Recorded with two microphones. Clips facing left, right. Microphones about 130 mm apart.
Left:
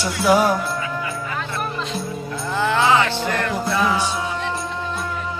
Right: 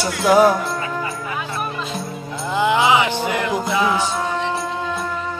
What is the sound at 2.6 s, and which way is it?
Music, 15° right (ahead or behind).